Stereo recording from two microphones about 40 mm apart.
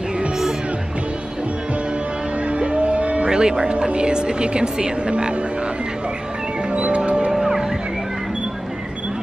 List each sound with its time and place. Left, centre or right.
2.4 s music: right
3.3 s speech: centre
6.7 s music: right
7.3 s music: centre